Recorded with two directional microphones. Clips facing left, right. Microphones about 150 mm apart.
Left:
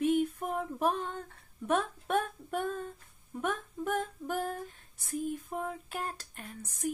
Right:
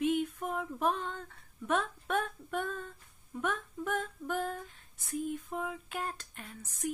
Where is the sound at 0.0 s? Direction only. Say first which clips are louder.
Left 2 dB; 40° left (ahead or behind).